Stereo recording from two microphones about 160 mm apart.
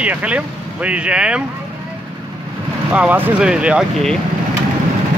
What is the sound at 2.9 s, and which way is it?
Speech, 5° right (ahead or behind).